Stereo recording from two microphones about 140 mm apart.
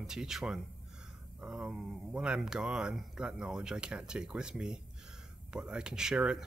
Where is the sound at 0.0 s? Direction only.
5° right (ahead or behind).